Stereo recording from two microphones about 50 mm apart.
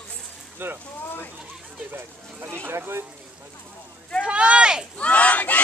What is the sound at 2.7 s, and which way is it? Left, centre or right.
Speech, right.